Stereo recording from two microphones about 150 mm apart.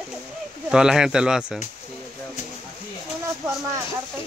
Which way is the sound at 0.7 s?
5° right (ahead or behind).